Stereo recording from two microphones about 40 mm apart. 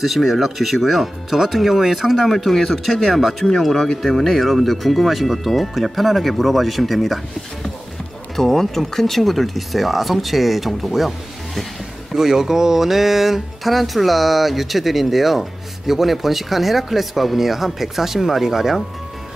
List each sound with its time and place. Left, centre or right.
0.0 s speech: centre
3.7 s speech: centre
4.0 s speech: centre
8.4 s speech: centre